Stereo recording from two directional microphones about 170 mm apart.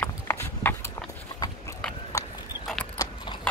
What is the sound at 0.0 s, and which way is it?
Horse, 15° left (ahead or behind).